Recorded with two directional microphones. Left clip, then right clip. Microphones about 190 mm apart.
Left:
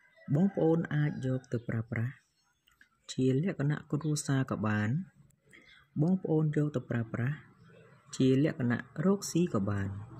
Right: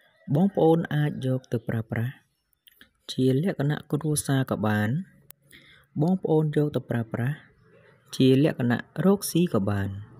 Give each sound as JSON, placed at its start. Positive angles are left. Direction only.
{"t": 0.3, "sound": "speech", "side_deg": -35}
{"t": 6.2, "sound": "speech", "side_deg": -35}